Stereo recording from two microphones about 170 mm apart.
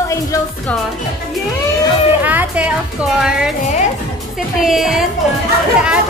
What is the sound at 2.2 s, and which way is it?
Music, 10° right (ahead or behind).